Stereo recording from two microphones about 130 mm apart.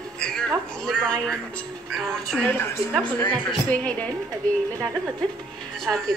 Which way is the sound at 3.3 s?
10° left (ahead or behind).